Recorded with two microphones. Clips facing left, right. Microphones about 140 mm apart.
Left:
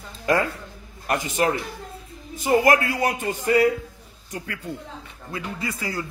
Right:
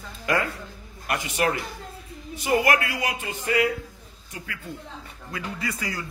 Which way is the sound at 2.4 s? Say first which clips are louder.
Left 4 dB; 40° left (ahead or behind).